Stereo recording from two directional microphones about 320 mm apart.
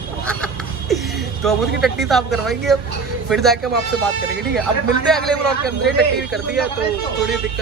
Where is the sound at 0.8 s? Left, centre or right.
Centre.